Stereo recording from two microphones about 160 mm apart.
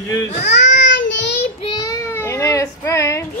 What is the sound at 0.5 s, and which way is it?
Child singing, 90° left.